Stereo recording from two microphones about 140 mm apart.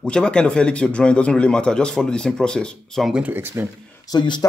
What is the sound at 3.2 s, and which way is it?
Speech, 15° right (ahead or behind).